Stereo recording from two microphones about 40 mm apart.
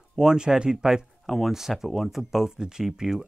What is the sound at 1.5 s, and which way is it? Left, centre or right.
Speech, centre.